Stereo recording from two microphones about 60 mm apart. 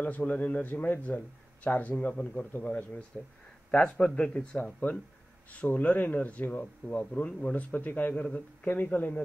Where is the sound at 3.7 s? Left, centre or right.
Centre.